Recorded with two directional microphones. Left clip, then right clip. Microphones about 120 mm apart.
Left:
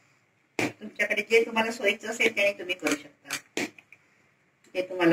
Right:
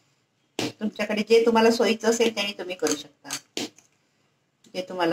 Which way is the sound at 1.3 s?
40° right (ahead or behind).